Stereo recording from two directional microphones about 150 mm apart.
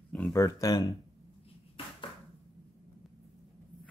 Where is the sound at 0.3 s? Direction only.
25° left (ahead or behind).